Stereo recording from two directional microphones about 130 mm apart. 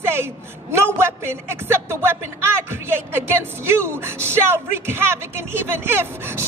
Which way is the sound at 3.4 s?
20° right (ahead or behind).